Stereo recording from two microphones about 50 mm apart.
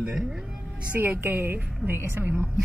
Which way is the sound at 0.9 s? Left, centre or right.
Right.